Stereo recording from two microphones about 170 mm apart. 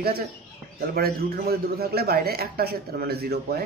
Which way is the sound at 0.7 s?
65° right (ahead or behind).